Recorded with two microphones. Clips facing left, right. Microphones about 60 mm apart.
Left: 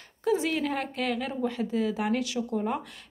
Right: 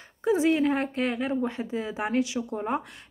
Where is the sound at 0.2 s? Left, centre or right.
Right.